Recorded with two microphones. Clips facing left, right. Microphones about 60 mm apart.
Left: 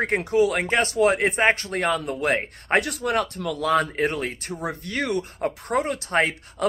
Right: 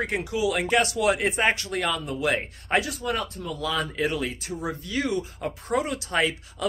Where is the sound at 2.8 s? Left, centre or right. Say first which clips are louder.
Left 4 dB; left.